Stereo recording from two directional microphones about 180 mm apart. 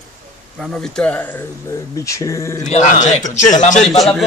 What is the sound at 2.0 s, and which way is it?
Speech, 15° left (ahead or behind).